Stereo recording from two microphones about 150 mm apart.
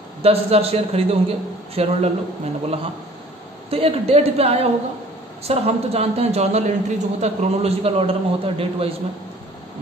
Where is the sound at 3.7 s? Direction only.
40° right (ahead or behind).